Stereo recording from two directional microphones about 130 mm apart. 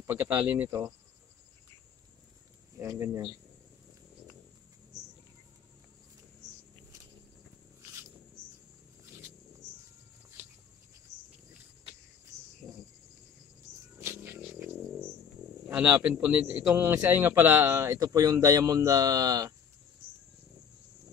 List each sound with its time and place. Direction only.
0.0 s speech: 20° right (ahead or behind)
2.8 s a man's voice: 20° right (ahead or behind)
13.9 s music: 20° right (ahead or behind)
15.7 s a man's voice: 15° right (ahead or behind); by 19.5 s 30° right (ahead or behind)